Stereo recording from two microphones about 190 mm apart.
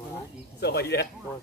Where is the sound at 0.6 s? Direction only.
60° left (ahead or behind).